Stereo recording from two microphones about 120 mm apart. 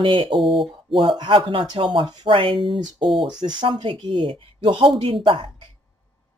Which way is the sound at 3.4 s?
40° right (ahead or behind).